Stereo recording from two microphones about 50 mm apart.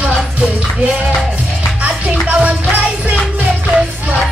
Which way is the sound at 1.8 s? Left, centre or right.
Right.